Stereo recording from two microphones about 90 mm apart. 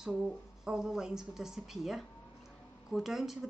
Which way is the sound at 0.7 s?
5° right (ahead or behind).